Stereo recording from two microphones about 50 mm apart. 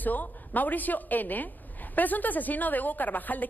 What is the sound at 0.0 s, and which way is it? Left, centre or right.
A woman's voice, left.